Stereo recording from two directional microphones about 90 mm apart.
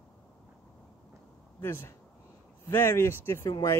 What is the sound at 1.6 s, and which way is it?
Speech, 30° left (ahead or behind).